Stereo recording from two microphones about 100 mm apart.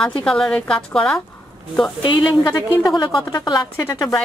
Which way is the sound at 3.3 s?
40° left (ahead or behind).